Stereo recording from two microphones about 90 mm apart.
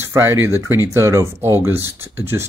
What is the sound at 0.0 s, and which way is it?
Speech, 30° right (ahead or behind).